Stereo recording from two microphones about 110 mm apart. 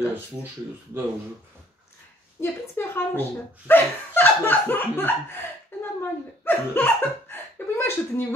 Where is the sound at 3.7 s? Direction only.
20° left (ahead or behind).